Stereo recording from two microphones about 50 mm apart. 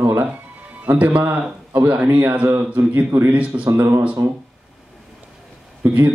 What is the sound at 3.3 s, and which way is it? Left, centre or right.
Speech, right.